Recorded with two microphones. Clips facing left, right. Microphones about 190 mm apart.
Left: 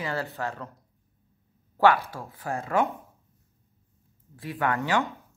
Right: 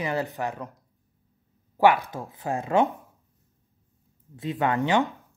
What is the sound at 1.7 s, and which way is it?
Speech, 15° right (ahead or behind).